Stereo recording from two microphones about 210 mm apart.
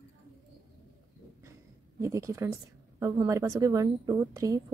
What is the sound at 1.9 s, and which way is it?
A woman's voice, 15° right (ahead or behind).